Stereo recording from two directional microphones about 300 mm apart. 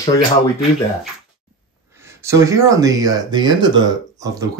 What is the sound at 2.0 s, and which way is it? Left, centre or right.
Speech, centre.